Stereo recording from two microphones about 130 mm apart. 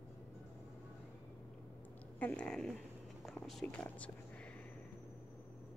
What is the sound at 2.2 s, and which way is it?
Speech, 10° left (ahead or behind).